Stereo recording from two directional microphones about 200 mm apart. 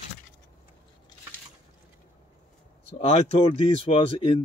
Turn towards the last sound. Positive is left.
turn(degrees=30)  # may be behind; listen again after turning